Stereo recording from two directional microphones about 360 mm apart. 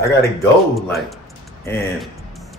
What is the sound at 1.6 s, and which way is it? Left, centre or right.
Music, centre.